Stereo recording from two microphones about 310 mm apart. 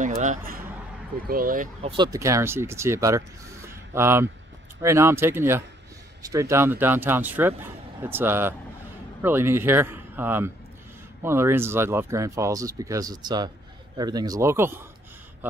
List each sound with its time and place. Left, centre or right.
0.0 s speech: right; by 14.9 s centre